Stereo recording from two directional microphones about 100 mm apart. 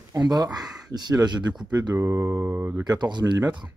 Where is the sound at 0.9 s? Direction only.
45° right (ahead or behind).